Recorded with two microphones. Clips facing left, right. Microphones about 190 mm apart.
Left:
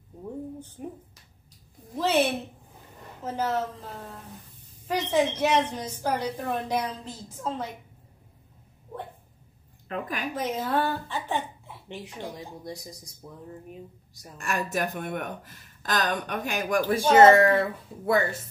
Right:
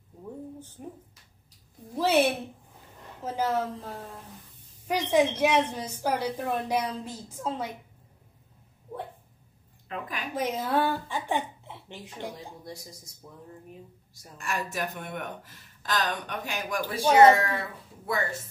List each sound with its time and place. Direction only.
0.8 s speech: 15° left (ahead or behind)
2.0 s a woman's voice: 10° right (ahead or behind)
4.8 s a woman's voice: 10° right (ahead or behind)
9.8 s a woman's voice: 45° left (ahead or behind)
10.3 s a woman's voice: 10° right (ahead or behind)
12.2 s speech: 15° left (ahead or behind)
14.4 s speech: 50° left (ahead or behind)
17.0 s a woman's voice: 15° right (ahead or behind)
17.4 s speech: 55° left (ahead or behind)